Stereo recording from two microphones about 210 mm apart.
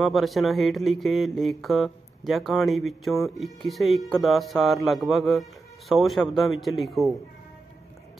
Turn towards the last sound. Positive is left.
turn(degrees=0)  # may be behind; listen again after turning